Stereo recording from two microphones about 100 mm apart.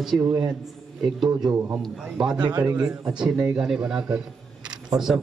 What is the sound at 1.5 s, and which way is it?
Speech, 20° right (ahead or behind).